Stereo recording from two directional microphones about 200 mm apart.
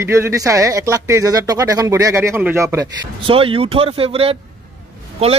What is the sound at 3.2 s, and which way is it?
Speech, 25° right (ahead or behind).